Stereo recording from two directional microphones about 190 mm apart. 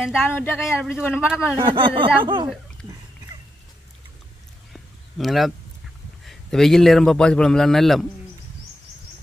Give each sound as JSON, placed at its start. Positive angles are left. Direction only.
{"t": 0.0, "sound": "a man's voice", "side_deg": -5}
{"t": 0.3, "sound": "speech", "side_deg": 10}
{"t": 0.7, "sound": "a man's voice", "side_deg": -5}
{"t": 1.6, "sound": "speech", "side_deg": -25}
{"t": 5.1, "sound": "a man's voice", "side_deg": 0}